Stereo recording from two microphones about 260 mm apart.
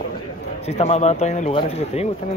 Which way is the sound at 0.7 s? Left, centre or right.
Left.